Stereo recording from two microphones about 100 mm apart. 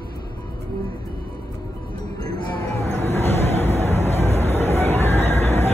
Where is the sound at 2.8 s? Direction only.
25° left (ahead or behind).